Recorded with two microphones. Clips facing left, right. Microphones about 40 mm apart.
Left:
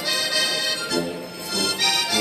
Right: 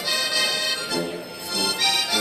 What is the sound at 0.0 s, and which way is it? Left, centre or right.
Music, centre.